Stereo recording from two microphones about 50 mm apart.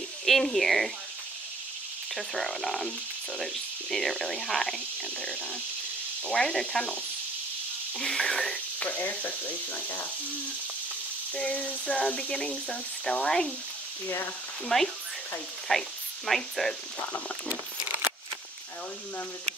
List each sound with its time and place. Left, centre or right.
0.2 s speech: centre
2.1 s speech: centre
3.9 s speech: centre
6.2 s speech: centre
8.0 s speech: centre
8.7 s speech: left
11.3 s speech: left
14.0 s speech: left
14.7 s speech: centre